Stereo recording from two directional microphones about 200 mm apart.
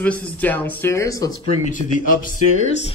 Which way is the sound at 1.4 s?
40° left (ahead or behind).